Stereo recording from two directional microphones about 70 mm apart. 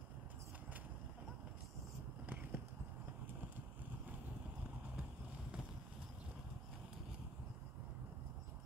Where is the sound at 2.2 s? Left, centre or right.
Right.